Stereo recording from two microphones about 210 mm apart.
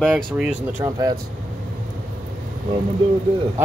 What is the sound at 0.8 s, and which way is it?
Speech, 20° right (ahead or behind).